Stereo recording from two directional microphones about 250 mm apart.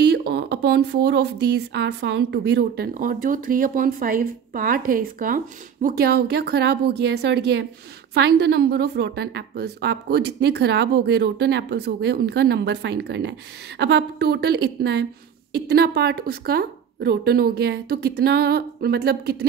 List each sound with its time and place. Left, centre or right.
0.0 s speech: right